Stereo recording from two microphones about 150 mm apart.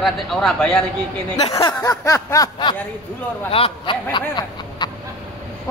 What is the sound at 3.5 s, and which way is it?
Speech, 40° left (ahead or behind).